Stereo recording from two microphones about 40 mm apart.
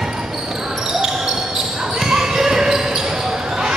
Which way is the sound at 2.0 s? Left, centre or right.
Centre.